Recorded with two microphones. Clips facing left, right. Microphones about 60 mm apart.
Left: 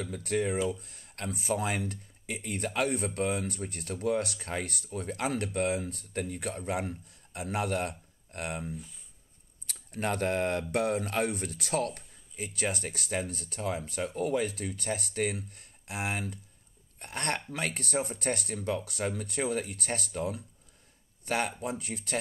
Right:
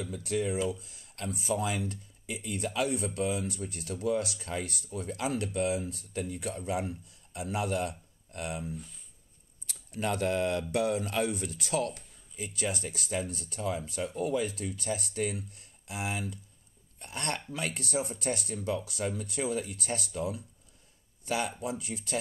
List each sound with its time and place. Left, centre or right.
0.0 s speech: left